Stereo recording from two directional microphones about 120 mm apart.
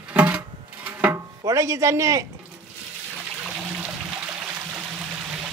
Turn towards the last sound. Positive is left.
turn(degrees=-10)  # may be behind; listen again after turning